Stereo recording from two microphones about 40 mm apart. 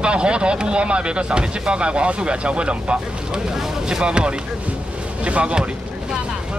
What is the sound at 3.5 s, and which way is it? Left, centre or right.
Boat, centre.